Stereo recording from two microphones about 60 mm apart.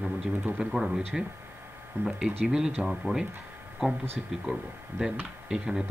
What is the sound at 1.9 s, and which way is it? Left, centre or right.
Speech, right.